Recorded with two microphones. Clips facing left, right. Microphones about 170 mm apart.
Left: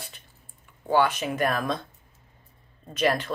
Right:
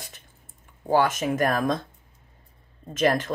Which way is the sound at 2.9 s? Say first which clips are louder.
Right 2 dB; 45° right (ahead or behind).